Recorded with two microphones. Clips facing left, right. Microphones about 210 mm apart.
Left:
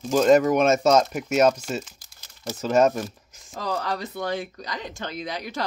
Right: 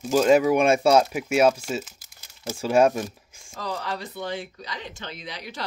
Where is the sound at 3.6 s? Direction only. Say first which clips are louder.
Left 3 dB; 45° left (ahead or behind).